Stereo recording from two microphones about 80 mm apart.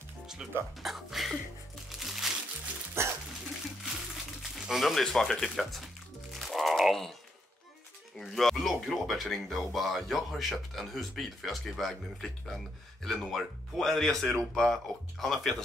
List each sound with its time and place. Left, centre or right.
0.4 s speech: centre
1.9 s music: centre
3.0 s dog: right
4.4 s a sound: centre
5.0 s speech: centre
6.3 s a sound: centre
8.2 s speech: centre